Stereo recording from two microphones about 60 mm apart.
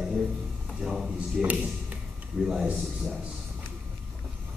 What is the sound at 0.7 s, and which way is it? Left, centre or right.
Speech, centre.